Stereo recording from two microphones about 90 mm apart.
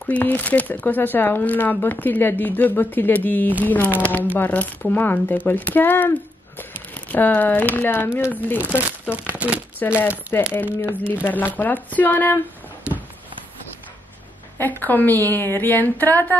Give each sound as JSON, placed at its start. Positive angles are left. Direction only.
{"t": 0.0, "sound": "speech", "side_deg": 20}
{"t": 9.3, "sound": "speech", "side_deg": -15}
{"t": 9.8, "sound": "speech", "side_deg": 25}
{"t": 14.6, "sound": "speech", "side_deg": 20}